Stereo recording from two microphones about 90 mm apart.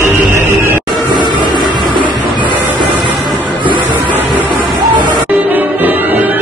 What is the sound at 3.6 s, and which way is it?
Music, 60° right (ahead or behind).